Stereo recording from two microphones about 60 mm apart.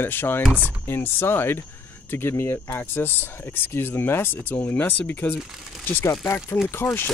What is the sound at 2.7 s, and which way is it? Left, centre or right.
Speech, left.